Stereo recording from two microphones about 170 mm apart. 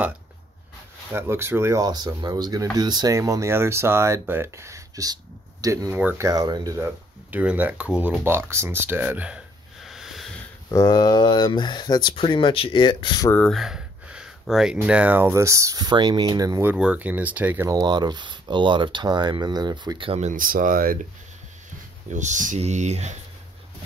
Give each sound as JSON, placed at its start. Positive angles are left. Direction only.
{"t": 1.1, "sound": "speech", "side_deg": -15}
{"t": 7.2, "sound": "speech", "side_deg": -10}
{"t": 10.7, "sound": "speech", "side_deg": 20}
{"t": 13.3, "sound": "speech", "side_deg": 5}
{"t": 16.7, "sound": "speech", "side_deg": -5}
{"t": 17.6, "sound": "speech", "side_deg": -25}
{"t": 22.1, "sound": "speech", "side_deg": -45}